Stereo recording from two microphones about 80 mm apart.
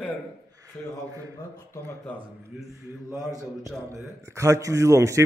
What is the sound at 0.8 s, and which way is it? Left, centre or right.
Speech, centre.